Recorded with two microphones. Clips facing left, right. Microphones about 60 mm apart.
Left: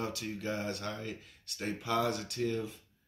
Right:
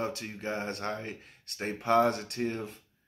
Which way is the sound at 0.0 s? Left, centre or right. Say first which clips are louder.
Right 2 dB; right.